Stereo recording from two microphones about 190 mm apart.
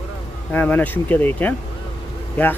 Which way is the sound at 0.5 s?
10° left (ahead or behind).